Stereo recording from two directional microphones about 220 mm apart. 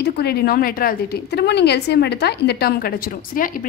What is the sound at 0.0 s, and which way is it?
A woman's voice, 45° left (ahead or behind).